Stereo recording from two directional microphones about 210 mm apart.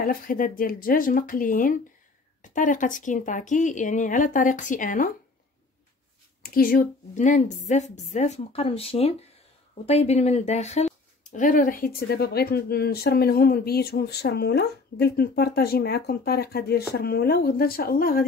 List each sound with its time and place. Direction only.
0.0 s a woman's voice: 40° left (ahead or behind)
6.4 s a woman's voice: 45° left (ahead or behind)